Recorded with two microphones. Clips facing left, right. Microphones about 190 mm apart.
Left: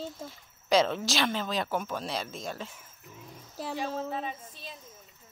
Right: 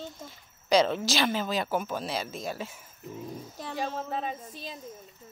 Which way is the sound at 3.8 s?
40° right (ahead or behind).